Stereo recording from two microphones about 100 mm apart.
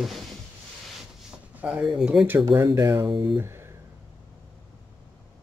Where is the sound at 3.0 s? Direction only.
45° right (ahead or behind).